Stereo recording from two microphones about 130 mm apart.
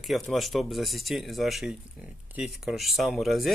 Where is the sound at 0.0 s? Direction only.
Centre (ahead or behind).